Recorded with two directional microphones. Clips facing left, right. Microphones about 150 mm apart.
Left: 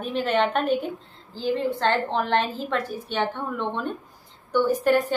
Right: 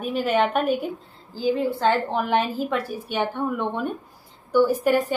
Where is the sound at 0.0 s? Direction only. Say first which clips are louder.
Right 1 dB; 10° right (ahead or behind).